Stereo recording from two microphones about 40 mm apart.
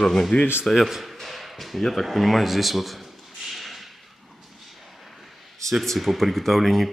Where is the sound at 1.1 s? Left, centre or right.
Centre.